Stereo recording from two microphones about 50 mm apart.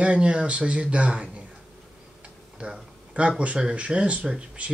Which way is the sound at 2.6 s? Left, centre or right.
Right.